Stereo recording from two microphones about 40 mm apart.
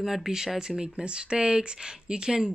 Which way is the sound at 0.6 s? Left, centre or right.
Right.